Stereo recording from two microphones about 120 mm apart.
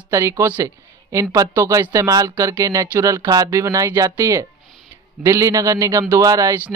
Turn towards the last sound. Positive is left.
turn(degrees=-30)  # may be behind; listen again after turning